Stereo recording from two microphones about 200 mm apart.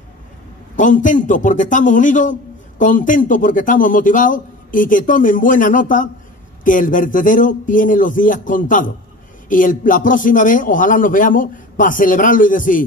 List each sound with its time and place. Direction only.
0.7 s a man's voice: 40° left (ahead or behind)